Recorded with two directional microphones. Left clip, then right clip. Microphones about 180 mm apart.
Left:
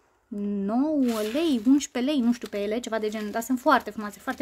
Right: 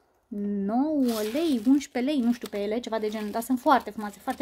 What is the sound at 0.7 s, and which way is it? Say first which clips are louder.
Speech: left 1 dB; 10° left (ahead or behind).